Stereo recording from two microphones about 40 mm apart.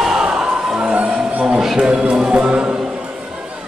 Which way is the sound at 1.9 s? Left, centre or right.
Right.